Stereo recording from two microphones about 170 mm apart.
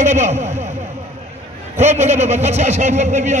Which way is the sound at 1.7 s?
40° right (ahead or behind).